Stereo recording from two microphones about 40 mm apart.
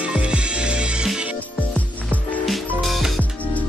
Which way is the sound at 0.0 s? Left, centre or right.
Right.